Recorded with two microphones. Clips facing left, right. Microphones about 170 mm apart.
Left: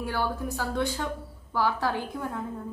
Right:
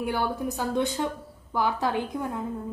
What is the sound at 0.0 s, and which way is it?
A woman's voice, 20° right (ahead or behind).